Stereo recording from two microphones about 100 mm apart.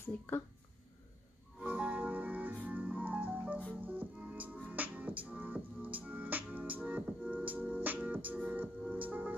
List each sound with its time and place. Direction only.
1.6 s music: 15° right (ahead or behind)